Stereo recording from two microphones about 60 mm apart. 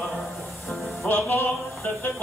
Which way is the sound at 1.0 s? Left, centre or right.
Left.